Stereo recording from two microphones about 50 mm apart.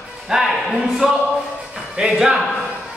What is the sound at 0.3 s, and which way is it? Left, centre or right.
A man's voice, centre.